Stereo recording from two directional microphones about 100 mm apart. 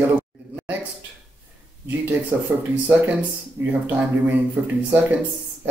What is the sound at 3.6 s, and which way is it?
Speech, 20° right (ahead or behind).